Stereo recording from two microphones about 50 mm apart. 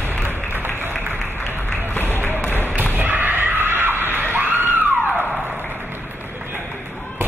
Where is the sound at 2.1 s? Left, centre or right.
Left.